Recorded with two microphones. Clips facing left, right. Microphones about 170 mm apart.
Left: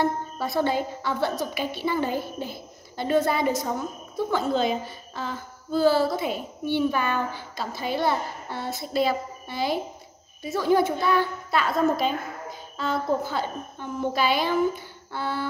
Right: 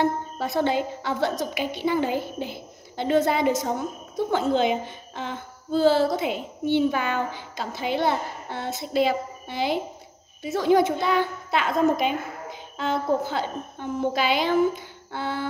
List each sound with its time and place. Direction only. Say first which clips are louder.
0.0 s speech: right 1 dB; 20° right (ahead or behind)
14.6 s humming: right 2 dB; 20° right (ahead or behind)